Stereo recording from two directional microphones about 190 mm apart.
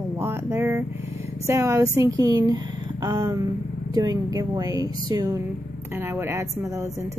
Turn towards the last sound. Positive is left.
turn(degrees=-15)  # may be behind; listen again after turning